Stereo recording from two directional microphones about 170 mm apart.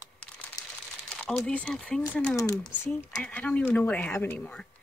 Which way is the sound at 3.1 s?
10° left (ahead or behind).